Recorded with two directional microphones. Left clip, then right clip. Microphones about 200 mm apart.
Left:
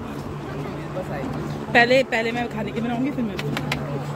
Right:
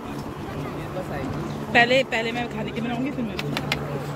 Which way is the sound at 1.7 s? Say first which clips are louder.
Left 2 dB; 15° left (ahead or behind).